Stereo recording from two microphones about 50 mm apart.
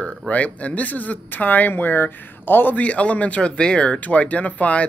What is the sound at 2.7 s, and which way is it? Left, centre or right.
Speech, left.